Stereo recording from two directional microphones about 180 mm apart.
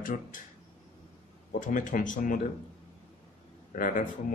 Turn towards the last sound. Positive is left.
turn(degrees=45)  # may be behind; listen again after turning